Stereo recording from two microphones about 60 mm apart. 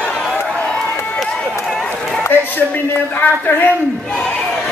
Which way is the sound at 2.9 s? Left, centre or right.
Left.